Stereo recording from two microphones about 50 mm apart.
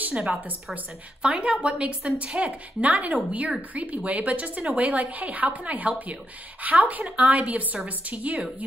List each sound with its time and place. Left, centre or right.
0.1 s a woman's voice: right